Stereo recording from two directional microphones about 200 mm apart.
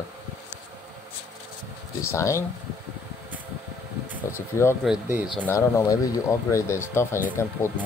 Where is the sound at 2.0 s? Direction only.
15° left (ahead or behind).